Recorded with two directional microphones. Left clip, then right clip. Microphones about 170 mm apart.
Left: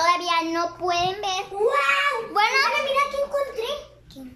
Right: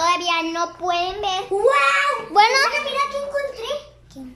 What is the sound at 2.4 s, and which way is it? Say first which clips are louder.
Speech: right 6 dB; 35° right (ahead or behind).